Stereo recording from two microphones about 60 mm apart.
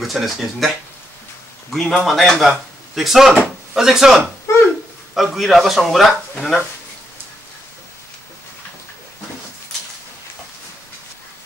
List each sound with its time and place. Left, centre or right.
0.0 s a man's voice: centre
1.7 s a man's voice: centre
4.5 s a sound: left
5.1 s a man's voice: centre